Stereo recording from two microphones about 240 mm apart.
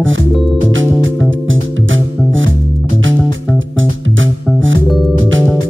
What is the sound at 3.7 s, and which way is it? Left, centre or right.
Music, right.